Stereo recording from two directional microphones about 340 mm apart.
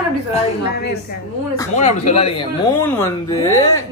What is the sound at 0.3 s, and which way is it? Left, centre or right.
Speech, left.